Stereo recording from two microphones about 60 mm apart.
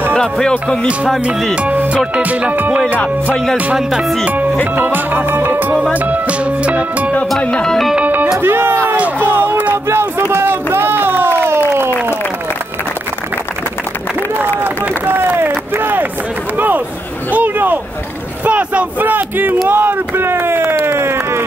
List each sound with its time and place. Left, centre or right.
0.1 s speech: centre
1.5 s music: right
2.1 s speech: right
4.7 s music: right
5.9 s speech: right
7.4 s music: centre
8.4 s speech: right
8.9 s a sound: right
9.8 s a sound: right
14.6 s run: right
16.5 s a sound: right
18.4 s speech: right